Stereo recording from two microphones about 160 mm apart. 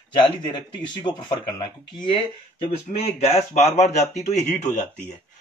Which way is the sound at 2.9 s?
45° left (ahead or behind).